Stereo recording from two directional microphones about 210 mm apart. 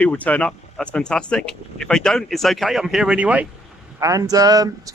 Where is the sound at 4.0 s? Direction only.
15° right (ahead or behind).